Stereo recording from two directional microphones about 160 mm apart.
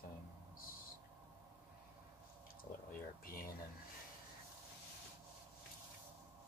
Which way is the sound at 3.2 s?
65° left (ahead or behind).